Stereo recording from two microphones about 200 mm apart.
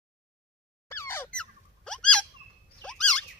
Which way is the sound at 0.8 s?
10° left (ahead or behind).